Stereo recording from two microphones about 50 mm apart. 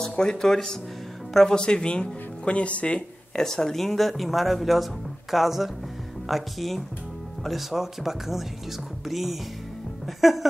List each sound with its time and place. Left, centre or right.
0.1 s speech: centre
3.3 s speech: centre